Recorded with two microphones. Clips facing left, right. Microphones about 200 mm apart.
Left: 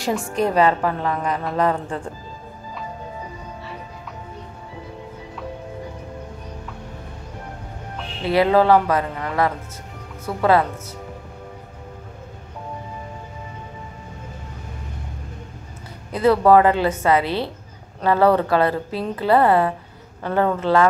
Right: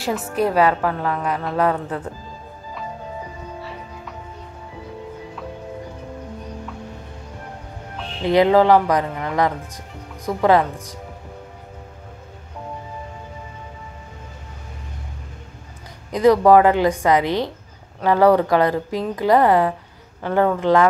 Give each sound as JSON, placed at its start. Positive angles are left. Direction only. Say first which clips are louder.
{"t": 0.0, "sound": "a woman's voice", "louder": "even", "side_deg": -5}
{"t": 8.2, "sound": "a woman's voice", "louder": "right 2 dB", "side_deg": -20}
{"t": 16.1, "sound": "a woman's voice", "louder": "right 2 dB", "side_deg": -15}